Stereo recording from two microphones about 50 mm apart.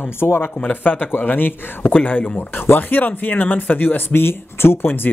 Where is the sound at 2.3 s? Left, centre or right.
Left.